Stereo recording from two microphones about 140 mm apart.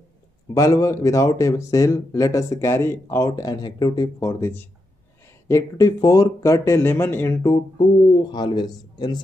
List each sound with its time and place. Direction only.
0.6 s speech: 25° left (ahead or behind)
8.3 s a man's voice: 30° left (ahead or behind)